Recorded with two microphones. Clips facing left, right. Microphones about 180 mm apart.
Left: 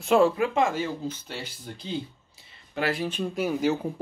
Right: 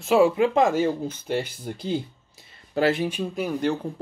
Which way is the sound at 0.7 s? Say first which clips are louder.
Right 6 dB; 50° right (ahead or behind).